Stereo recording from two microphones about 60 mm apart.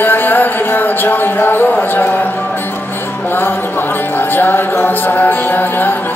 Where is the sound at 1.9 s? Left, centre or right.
Left.